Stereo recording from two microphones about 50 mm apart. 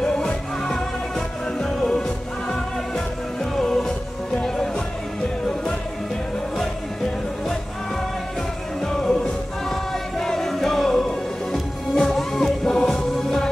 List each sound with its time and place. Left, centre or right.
0.0 s music: centre
8.8 s music: centre